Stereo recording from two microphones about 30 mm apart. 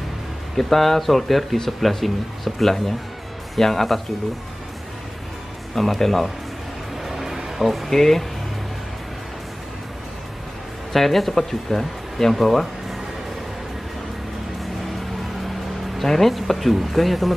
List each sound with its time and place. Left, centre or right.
0.6 s speech: centre
5.8 s speech: centre
7.3 s music: centre
7.6 s speech: centre
7.9 s speech: centre
10.9 s speech: centre
12.4 s speech: centre
16.0 s speech: centre